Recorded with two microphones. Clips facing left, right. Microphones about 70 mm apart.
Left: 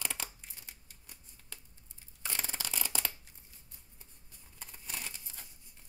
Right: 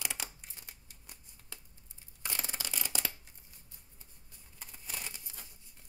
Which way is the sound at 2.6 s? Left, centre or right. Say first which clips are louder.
Left 1 dB; centre.